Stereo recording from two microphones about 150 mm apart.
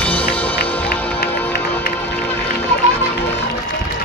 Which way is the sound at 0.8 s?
90° left.